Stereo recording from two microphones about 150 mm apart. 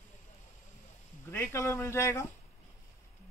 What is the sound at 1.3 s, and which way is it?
Speech, 15° left (ahead or behind).